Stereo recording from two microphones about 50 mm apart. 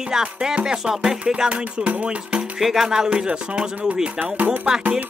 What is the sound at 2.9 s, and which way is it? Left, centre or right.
Speech, centre.